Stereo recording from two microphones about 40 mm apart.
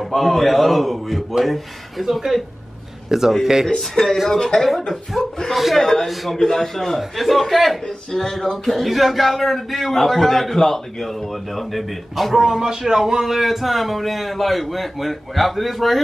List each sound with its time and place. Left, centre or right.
0.0 s speech: centre
3.6 s a man's voice: centre
4.6 s speech: centre
5.8 s a man's voice: centre
7.8 s speech: centre
12.4 s speech: centre